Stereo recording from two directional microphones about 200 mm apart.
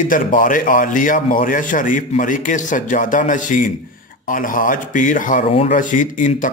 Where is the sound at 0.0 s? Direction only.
40° left (ahead or behind).